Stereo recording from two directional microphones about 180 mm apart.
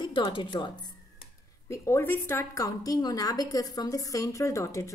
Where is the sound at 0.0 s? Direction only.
25° left (ahead or behind).